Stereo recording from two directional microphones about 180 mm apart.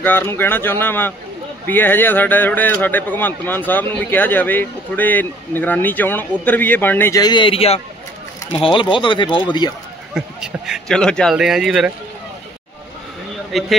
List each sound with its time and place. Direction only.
0.0 s speech: 10° left (ahead or behind)
10.1 s a man's voice: 5° right (ahead or behind)
13.5 s speech: centre (ahead or behind)